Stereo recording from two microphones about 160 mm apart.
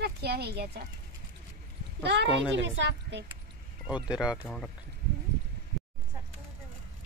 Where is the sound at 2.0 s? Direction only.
90° right.